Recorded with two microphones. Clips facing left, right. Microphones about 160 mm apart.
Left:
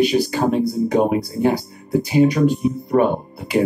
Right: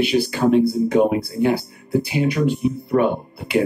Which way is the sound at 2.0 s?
40° left (ahead or behind).